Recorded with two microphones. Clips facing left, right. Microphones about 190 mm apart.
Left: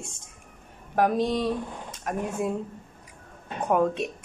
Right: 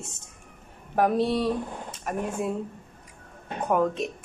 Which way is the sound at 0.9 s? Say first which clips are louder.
Right 1 dB; 5° right (ahead or behind).